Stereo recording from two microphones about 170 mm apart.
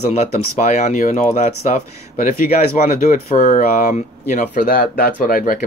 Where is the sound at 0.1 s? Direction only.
45° left (ahead or behind).